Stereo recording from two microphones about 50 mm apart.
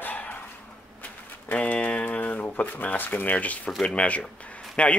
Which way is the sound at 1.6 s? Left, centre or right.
Left.